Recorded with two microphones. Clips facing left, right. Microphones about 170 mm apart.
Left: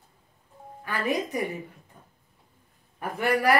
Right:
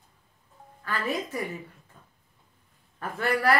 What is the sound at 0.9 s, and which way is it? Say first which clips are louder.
Speech: left 3 dB; 15° left (ahead or behind).